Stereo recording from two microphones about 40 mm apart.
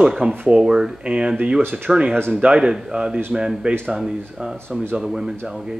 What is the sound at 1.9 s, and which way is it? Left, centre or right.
Speech, centre.